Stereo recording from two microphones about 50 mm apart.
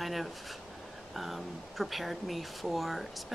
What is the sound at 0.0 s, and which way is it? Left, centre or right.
Speech, centre.